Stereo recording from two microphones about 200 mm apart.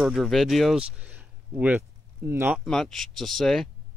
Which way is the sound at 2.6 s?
Centre (ahead or behind).